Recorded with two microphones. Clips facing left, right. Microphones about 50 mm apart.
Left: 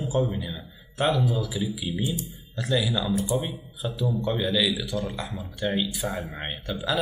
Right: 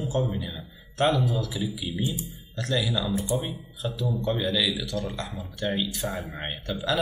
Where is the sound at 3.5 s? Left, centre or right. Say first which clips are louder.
Even; centre.